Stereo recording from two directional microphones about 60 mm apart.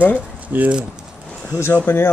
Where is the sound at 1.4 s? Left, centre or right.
Left.